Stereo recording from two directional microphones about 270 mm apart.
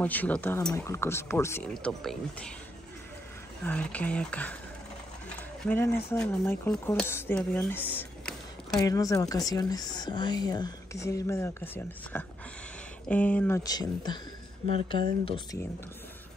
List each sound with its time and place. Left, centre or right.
0.0 s speech: centre
3.6 s speech: centre
5.6 s speech: centre
15.2 s speech: centre